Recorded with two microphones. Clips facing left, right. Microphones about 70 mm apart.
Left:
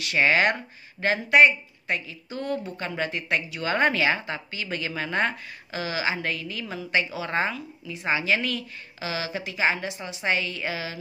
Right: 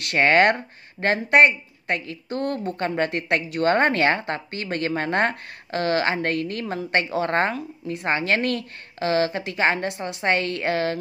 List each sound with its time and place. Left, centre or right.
0.0 s a woman's voice: right